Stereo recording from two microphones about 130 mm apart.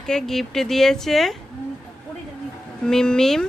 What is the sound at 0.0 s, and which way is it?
A woman's voice, 5° left (ahead or behind).